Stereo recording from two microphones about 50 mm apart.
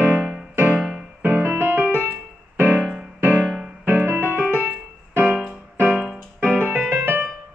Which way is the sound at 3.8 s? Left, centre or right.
Right.